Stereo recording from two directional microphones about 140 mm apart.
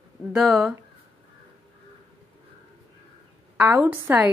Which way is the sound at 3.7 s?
15° right (ahead or behind).